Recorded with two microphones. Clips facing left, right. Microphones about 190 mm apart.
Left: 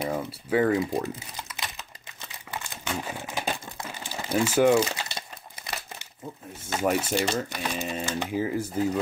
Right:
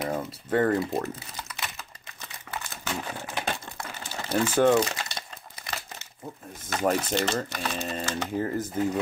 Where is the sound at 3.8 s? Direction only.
10° left (ahead or behind).